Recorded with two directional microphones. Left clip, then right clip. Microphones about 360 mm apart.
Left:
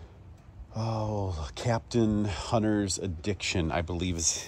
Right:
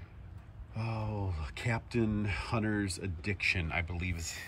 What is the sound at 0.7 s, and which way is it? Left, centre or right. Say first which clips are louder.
Speech: left 7 dB; centre.